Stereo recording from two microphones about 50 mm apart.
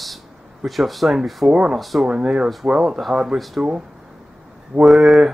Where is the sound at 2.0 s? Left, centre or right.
Centre.